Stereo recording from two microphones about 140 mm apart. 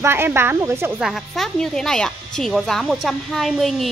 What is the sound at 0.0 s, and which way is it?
Speech, 15° right (ahead or behind).